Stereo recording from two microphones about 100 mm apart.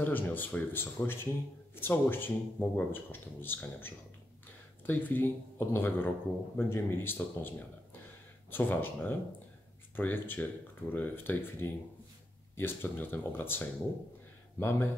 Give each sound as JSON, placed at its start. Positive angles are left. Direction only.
{"t": 0.0, "sound": "speech", "side_deg": 20}